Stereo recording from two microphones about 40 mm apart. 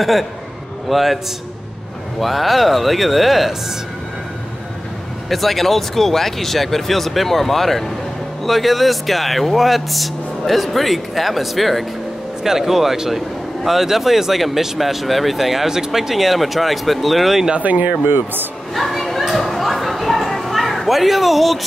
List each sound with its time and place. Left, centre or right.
0.0 s speech: centre
5.3 s speech: centre
17.6 s speech: right
18.0 s speech: right
18.8 s a sound: centre